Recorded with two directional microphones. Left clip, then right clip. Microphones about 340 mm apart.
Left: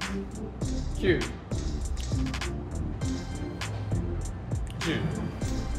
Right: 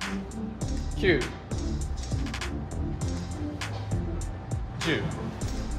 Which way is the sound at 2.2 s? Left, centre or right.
Centre.